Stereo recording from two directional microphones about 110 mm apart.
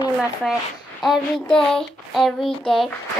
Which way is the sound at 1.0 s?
40° left (ahead or behind).